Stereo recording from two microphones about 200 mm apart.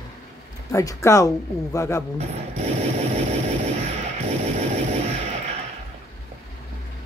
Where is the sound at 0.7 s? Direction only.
15° left (ahead or behind).